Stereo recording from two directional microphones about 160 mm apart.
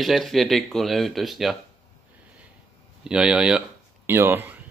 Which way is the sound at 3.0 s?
5° right (ahead or behind).